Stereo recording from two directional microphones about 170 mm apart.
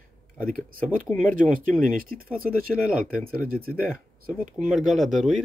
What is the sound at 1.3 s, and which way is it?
Speech, 55° right (ahead or behind).